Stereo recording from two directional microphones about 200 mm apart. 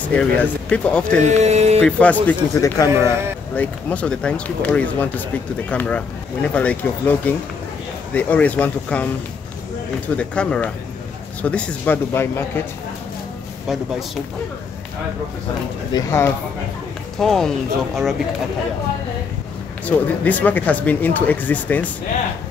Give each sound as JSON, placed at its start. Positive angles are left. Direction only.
{"t": 0.4, "sound": "speech", "side_deg": 5}
{"t": 1.2, "sound": "music", "side_deg": -35}
{"t": 1.8, "sound": "speech", "side_deg": 5}
{"t": 3.5, "sound": "speech", "side_deg": 5}
{"t": 15.9, "sound": "speech", "side_deg": 15}
{"t": 17.2, "sound": "speech", "side_deg": 0}
{"t": 19.8, "sound": "speech", "side_deg": 10}